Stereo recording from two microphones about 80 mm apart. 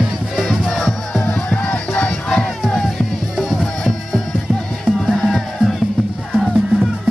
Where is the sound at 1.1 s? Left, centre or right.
Centre.